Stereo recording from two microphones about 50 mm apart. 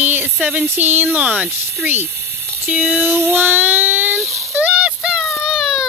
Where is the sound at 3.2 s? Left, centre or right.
Right.